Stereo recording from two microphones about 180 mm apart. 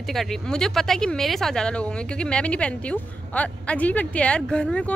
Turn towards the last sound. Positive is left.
turn(degrees=5)  # may be behind; listen again after turning